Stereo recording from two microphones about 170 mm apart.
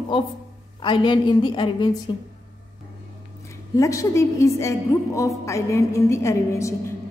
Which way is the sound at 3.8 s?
20° left (ahead or behind).